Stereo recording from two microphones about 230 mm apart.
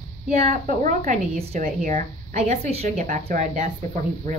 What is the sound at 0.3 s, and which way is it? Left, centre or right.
A woman's voice, right.